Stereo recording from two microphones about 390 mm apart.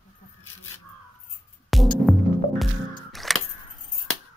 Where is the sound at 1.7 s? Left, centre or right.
Centre.